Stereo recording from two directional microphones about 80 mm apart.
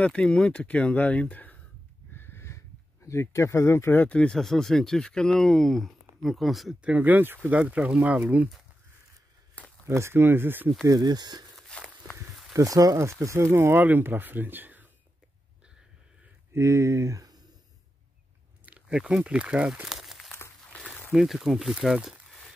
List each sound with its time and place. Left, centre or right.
0.0 s speech: centre
2.1 s a sound: left
4.1 s speech: centre
6.8 s speech: centre
9.8 s speech: right
10.9 s speech: right
11.7 s walk: centre
12.5 s speech: right
16.5 s speech: right
18.7 s speech: centre
19.9 s crumpling: centre
20.7 s a sound: centre
21.1 s speech: centre